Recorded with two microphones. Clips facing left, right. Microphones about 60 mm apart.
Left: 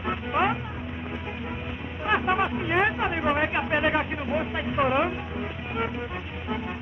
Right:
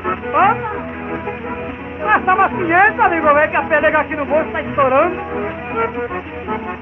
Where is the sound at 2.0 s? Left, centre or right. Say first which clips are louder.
Right 11 dB; right.